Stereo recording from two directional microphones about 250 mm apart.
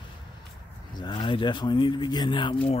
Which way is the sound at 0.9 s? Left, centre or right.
Centre.